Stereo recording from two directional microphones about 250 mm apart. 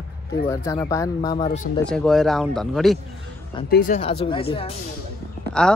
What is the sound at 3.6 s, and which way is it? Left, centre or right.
Speech, left.